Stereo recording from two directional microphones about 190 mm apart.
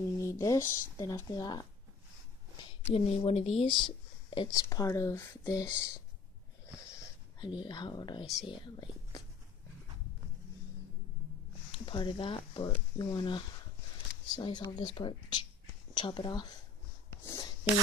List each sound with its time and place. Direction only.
0.2 s speech: 15° left (ahead or behind)
2.9 s speech: 30° left (ahead or behind)
6.9 s a sound: 25° left (ahead or behind)
8.5 s speech: 25° left (ahead or behind)
11.7 s speech: 25° left (ahead or behind)
17.2 s a sound: 15° left (ahead or behind)